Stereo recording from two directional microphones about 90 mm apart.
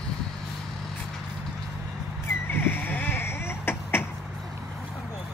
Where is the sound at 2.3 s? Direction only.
25° left (ahead or behind).